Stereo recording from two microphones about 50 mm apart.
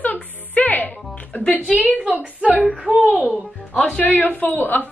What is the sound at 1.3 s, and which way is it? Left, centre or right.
Speech, left.